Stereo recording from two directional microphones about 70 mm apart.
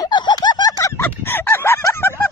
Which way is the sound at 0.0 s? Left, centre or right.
Left.